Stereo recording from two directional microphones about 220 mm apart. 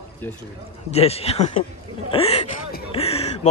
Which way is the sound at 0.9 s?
30° left (ahead or behind).